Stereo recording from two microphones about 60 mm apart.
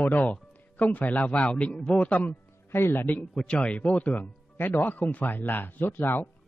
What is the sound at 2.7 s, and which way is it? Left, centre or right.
Speech, left.